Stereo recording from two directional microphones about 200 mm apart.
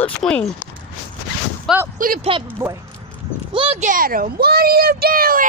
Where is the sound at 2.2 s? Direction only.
25° right (ahead or behind).